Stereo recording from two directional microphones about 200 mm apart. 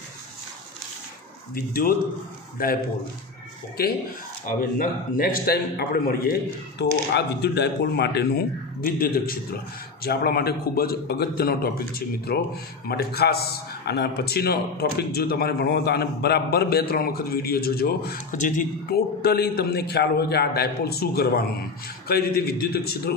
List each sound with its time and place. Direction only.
1.5 s a man's voice: 45° left (ahead or behind)
3.8 s a man's voice: 50° left (ahead or behind)